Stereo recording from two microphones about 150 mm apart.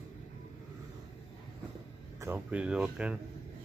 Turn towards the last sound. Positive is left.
turn(degrees=-5)  # may be behind; listen again after turning